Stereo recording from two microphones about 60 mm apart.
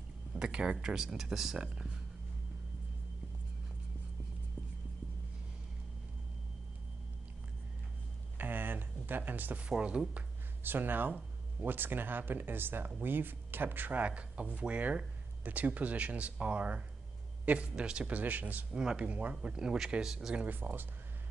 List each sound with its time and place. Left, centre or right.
0.3 s speech: centre
8.4 s a sound: right
9.7 s speech: centre
10.6 s speech: right
18.7 s speech: centre
20.3 s speech: right